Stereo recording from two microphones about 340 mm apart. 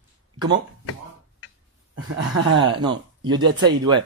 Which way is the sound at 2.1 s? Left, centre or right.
Right.